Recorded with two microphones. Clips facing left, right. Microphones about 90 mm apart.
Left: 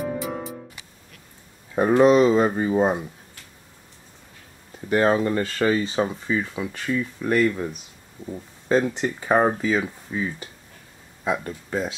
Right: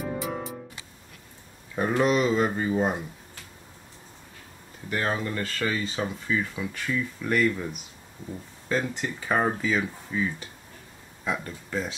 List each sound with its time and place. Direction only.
0.0 s music: centre (ahead or behind)
1.8 s speech: 30° left (ahead or behind)
4.8 s speech: 35° left (ahead or behind)
6.2 s speech: 20° left (ahead or behind)
8.7 s speech: 20° left (ahead or behind)
11.2 s speech: 15° left (ahead or behind)